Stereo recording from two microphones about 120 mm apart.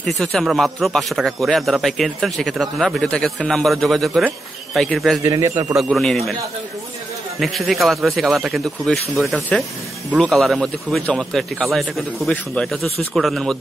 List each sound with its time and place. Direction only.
0.0 s a man's voice: 5° left (ahead or behind)
5.2 s a man's voice: 25° right (ahead or behind)
5.8 s a man's voice: centre (ahead or behind)
7.3 s a man's voice: centre (ahead or behind)